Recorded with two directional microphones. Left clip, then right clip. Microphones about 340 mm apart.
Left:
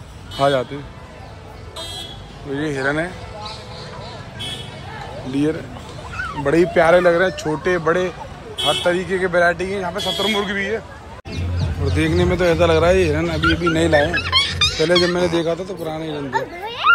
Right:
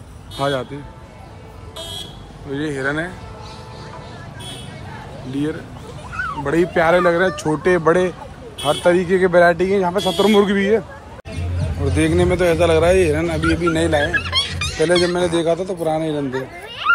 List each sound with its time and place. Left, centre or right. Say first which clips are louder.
0.4 s speech: left 4 dB; centre
2.5 s speech: left 1 dB; centre
6.4 s speech: left 2 dB; centre
11.8 s speech: right 2 dB; centre
16.3 s a sound: left 3 dB; centre